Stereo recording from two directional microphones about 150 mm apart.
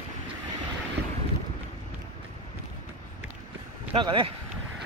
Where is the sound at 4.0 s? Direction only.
35° right (ahead or behind).